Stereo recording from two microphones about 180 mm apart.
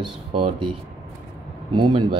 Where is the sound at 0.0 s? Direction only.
30° right (ahead or behind).